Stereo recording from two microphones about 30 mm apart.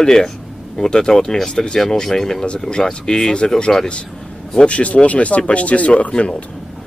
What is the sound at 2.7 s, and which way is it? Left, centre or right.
Speech, left.